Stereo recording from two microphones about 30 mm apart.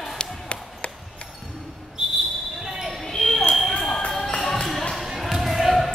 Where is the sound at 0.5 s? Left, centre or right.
Left.